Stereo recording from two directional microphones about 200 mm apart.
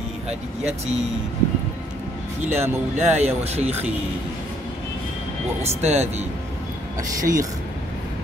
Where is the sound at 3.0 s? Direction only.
30° right (ahead or behind).